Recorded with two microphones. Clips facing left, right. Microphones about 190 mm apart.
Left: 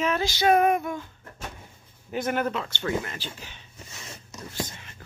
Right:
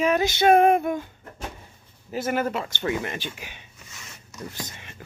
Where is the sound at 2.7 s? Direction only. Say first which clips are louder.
Right 2 dB; 15° right (ahead or behind).